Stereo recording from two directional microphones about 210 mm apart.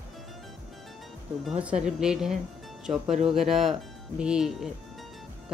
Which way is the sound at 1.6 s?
5° right (ahead or behind).